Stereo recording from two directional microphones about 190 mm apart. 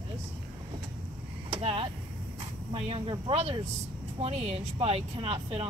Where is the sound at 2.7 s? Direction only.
30° right (ahead or behind).